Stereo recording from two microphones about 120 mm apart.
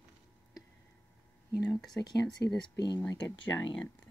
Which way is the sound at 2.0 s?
30° left (ahead or behind).